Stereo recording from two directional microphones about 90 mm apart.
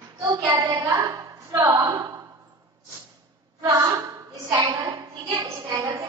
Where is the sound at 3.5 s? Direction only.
45° right (ahead or behind).